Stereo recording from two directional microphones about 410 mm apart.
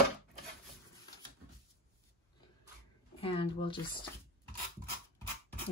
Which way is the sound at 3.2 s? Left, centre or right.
Centre.